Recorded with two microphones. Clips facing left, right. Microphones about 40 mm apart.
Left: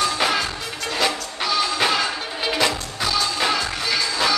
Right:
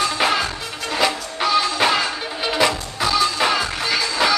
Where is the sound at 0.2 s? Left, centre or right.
Centre.